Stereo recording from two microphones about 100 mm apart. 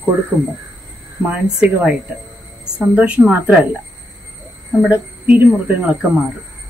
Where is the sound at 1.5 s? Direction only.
10° right (ahead or behind).